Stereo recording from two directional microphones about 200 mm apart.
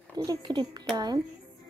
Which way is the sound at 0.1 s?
20° right (ahead or behind).